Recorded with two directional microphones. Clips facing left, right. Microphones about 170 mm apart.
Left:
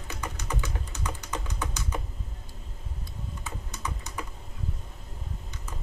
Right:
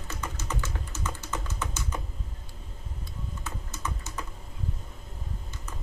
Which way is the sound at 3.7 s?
15° left (ahead or behind).